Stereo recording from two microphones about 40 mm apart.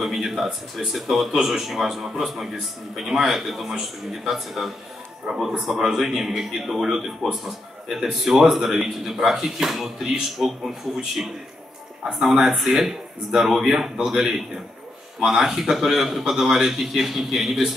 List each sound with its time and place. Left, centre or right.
0.0 s a man's voice: centre
5.3 s a man's voice: centre
5.7 s a man's voice: centre
12.2 s a man's voice: centre